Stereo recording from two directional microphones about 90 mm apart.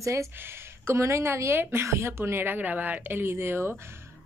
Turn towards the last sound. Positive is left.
turn(degrees=-25)  # may be behind; listen again after turning